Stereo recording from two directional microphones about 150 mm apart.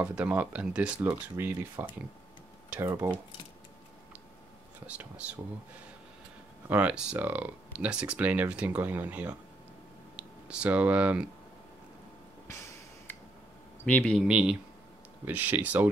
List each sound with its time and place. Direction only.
0.0 s speech: 10° right (ahead or behind)
0.9 s speech: 20° right (ahead or behind)
4.8 s speech: 10° right (ahead or behind)
6.7 s speech: 10° right (ahead or behind)
12.4 s a sound: 15° left (ahead or behind)
13.8 s a man's voice: 5° left (ahead or behind)
14.2 s speech: 5° right (ahead or behind)